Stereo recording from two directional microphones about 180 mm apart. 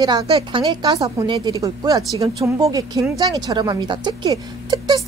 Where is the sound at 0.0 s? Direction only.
25° right (ahead or behind).